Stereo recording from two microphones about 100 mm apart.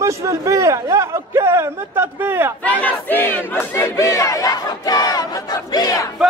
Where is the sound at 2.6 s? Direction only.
15° left (ahead or behind).